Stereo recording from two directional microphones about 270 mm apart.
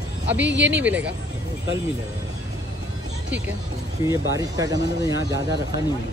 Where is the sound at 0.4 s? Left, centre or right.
Right.